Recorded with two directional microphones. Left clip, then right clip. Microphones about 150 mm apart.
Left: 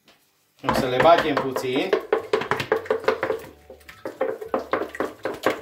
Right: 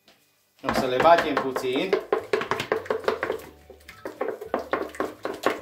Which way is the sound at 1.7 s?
10° right (ahead or behind).